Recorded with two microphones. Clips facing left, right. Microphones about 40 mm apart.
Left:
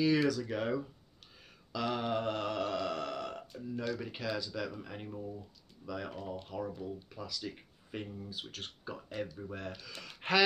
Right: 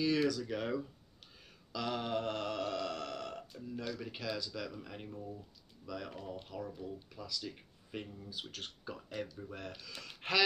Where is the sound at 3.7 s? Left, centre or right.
Centre.